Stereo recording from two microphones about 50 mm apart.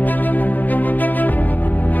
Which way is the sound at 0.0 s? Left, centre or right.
Left.